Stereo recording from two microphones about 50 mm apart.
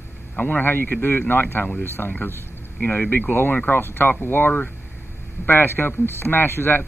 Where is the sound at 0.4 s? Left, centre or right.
Left.